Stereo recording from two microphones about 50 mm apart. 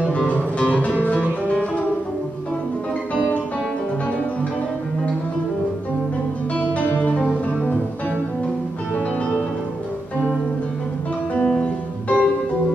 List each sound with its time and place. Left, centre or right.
0.6 s music: left
6.5 s music: left
11.6 s music: left